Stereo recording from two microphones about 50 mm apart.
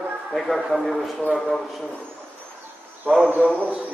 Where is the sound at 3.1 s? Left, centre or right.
Centre.